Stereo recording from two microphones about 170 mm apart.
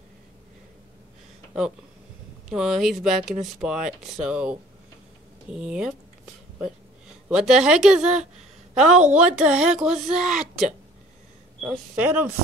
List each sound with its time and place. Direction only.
2.5 s speech: centre (ahead or behind)
7.2 s speech: 5° right (ahead or behind)
11.9 s speech: 10° right (ahead or behind)